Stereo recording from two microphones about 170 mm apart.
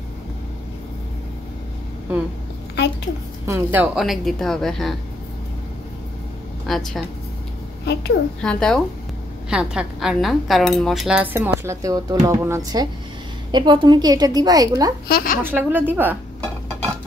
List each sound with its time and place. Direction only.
3.4 s a woman's voice: 15° right (ahead or behind)
6.7 s a woman's voice: centre (ahead or behind)
7.8 s a woman's voice: 75° left (ahead or behind)
8.4 s a woman's voice: 5° left (ahead or behind)
9.5 s cutlery: 5° right (ahead or behind)
13.5 s a woman's voice: 25° right (ahead or behind)
15.0 s a woman's voice: 60° left (ahead or behind)
15.4 s cutlery: 10° right (ahead or behind)